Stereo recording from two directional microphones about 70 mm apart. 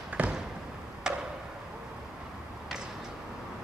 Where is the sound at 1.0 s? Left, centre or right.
Centre.